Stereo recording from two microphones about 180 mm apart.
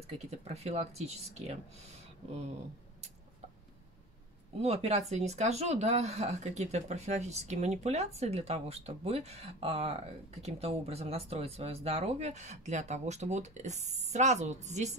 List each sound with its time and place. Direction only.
0.3 s speech: 35° right (ahead or behind)
4.6 s speech: 35° right (ahead or behind)